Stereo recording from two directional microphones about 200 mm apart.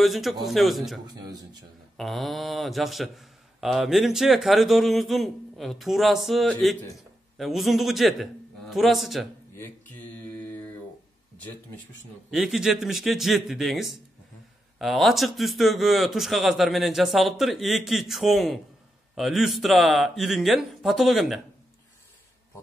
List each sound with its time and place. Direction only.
0.0 s speech: centre (ahead or behind)
1.0 s speech: 20° right (ahead or behind)
2.0 s speech: centre (ahead or behind)
9.6 s mantra: 10° left (ahead or behind)
12.3 s speech: centre (ahead or behind)